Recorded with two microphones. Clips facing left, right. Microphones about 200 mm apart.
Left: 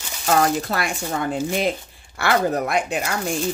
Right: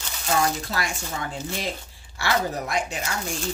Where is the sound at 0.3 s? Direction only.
60° left (ahead or behind).